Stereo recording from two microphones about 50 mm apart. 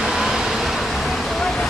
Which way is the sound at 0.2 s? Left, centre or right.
Centre.